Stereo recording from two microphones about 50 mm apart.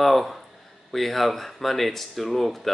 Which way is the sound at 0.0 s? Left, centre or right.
Centre.